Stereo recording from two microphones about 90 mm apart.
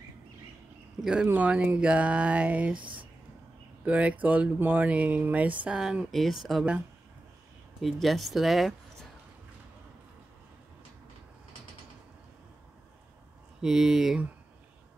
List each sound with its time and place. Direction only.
1.2 s speech: 15° right (ahead or behind)
2.7 s speech: 65° right (ahead or behind)
3.8 s speech: 15° right (ahead or behind)
7.8 s speech: centre (ahead or behind)
13.6 s speech: 5° right (ahead or behind)